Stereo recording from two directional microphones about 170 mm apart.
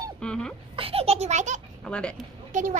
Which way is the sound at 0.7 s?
35° right (ahead or behind).